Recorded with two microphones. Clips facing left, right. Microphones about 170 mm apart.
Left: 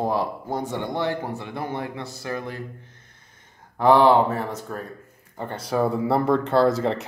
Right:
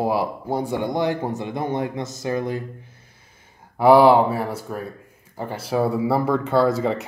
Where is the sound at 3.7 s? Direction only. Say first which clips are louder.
Right 3 dB; 10° right (ahead or behind).